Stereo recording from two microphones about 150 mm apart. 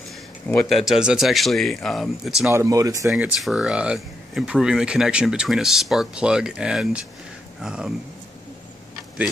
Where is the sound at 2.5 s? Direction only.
20° right (ahead or behind).